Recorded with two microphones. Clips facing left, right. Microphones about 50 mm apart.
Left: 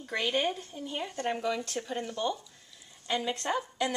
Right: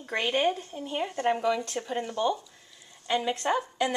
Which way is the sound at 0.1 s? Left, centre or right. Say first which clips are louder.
Right 4 dB; right.